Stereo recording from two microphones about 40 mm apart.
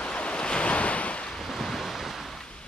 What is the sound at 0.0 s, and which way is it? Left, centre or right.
Waves, left.